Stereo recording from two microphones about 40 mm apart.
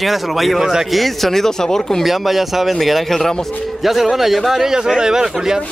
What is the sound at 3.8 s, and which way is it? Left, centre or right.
A man's voice, centre.